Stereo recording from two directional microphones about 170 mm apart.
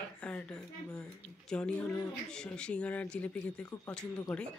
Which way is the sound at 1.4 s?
5° left (ahead or behind).